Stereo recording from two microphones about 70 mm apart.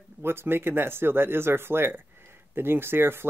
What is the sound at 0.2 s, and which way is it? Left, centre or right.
Speech, right.